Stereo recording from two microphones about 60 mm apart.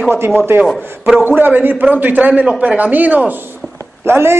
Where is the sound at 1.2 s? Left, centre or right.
Right.